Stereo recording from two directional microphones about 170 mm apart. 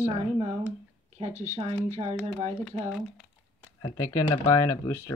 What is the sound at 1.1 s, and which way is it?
Speech, 40° right (ahead or behind).